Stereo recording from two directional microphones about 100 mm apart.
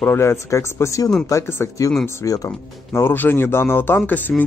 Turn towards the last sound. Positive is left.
turn(degrees=20)  # may be behind; listen again after turning